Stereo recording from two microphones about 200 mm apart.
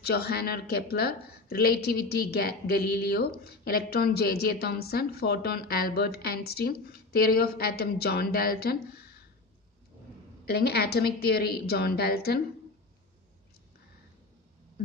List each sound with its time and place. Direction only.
0.0 s a woman's voice: 50° left (ahead or behind)
10.4 s a woman's voice: 55° left (ahead or behind)